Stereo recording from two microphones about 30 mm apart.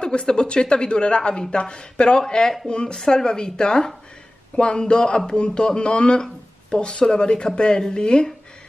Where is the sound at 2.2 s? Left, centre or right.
Left.